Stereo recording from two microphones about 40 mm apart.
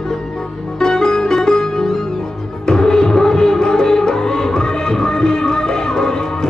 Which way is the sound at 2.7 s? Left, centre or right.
Centre.